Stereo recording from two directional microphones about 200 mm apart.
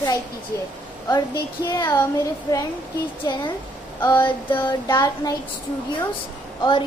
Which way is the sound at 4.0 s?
20° left (ahead or behind).